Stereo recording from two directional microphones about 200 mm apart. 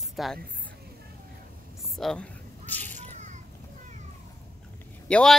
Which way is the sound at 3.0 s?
35° right (ahead or behind).